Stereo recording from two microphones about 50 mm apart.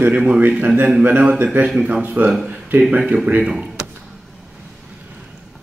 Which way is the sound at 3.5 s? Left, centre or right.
Centre.